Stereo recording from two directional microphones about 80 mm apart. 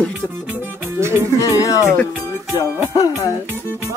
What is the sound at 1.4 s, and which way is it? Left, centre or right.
Music, left.